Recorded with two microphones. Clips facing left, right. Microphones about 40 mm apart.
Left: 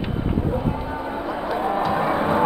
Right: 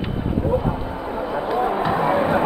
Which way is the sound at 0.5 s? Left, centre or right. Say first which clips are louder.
Right 2 dB; centre.